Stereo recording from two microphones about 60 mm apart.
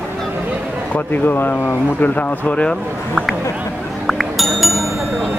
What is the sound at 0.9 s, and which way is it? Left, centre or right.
Speech, left.